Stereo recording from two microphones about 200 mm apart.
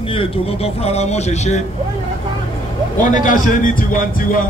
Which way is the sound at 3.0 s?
40° left (ahead or behind).